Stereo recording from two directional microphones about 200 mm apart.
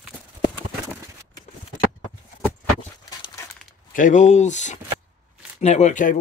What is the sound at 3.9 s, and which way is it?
Speech, 40° left (ahead or behind).